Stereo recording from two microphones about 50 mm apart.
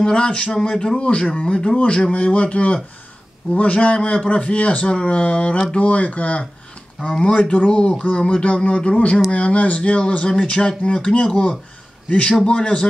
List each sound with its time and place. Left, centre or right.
0.0 s speech: centre